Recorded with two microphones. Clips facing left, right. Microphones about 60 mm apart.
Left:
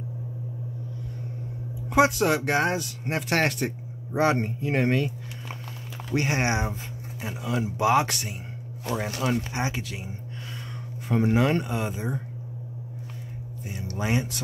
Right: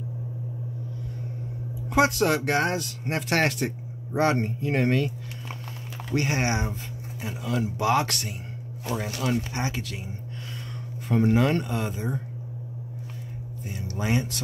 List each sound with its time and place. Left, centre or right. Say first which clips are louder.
1.9 s speech: left 1 dB; centre
13.9 s speech: even; centre